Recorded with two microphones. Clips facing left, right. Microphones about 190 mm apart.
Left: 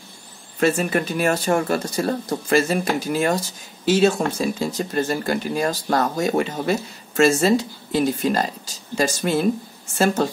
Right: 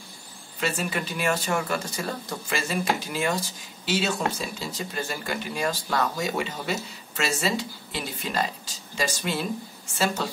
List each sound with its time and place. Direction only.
0.6 s speech: 50° left (ahead or behind)